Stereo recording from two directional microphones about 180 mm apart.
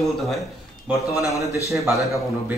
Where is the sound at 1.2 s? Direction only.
20° left (ahead or behind).